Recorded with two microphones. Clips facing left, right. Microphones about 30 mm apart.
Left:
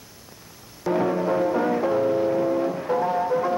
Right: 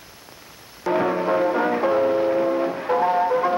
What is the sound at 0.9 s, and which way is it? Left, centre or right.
Music, right.